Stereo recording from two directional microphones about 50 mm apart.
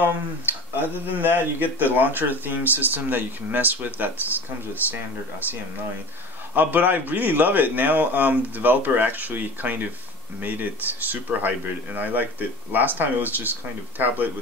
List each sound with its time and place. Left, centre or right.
1.1 s speech: right
6.5 s speech: right